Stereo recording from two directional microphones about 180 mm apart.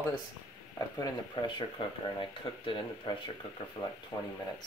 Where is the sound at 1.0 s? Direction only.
25° left (ahead or behind).